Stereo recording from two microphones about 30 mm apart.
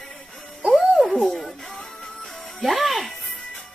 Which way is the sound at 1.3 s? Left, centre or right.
Centre.